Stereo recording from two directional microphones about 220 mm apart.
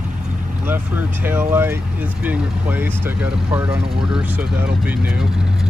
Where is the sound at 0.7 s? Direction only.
10° right (ahead or behind).